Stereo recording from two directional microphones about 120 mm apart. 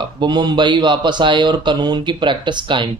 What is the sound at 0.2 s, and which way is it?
A man's voice, 35° right (ahead or behind).